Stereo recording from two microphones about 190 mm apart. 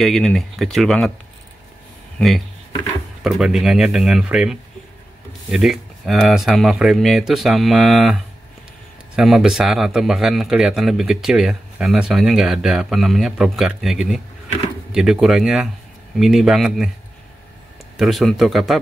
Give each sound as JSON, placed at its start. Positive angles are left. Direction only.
{"t": 0.0, "sound": "speech", "side_deg": 0}
{"t": 2.1, "sound": "speech", "side_deg": 0}
{"t": 17.9, "sound": "speech", "side_deg": 0}